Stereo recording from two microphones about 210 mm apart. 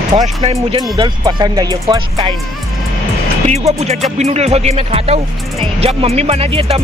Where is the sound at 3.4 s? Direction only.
30° right (ahead or behind).